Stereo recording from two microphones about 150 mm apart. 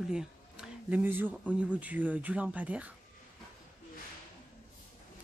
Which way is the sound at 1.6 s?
10° right (ahead or behind).